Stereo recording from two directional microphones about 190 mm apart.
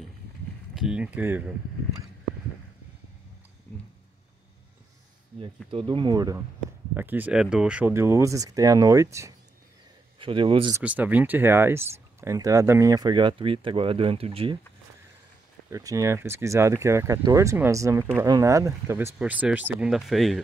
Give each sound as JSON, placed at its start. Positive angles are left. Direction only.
{"t": 0.7, "sound": "speech", "side_deg": -5}
{"t": 5.4, "sound": "speech", "side_deg": -25}
{"t": 10.1, "sound": "speech", "side_deg": -25}
{"t": 10.7, "sound": "speech", "side_deg": -10}
{"t": 15.7, "sound": "speech", "side_deg": -15}